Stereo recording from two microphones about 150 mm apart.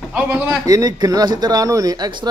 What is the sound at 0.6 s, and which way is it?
Speech, 25° right (ahead or behind).